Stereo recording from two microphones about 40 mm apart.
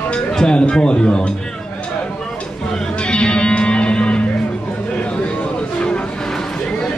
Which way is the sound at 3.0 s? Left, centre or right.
Left.